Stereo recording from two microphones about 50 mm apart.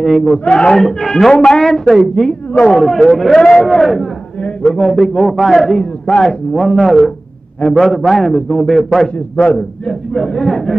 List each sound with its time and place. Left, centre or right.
0.0 s a man's voice: centre
0.5 s a man's voice: centre
0.7 s a man's voice: centre
3.3 s a man's voice: centre
3.6 s a man's voice: centre